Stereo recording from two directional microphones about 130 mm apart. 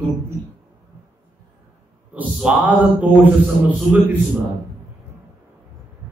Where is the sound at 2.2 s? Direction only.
5° right (ahead or behind).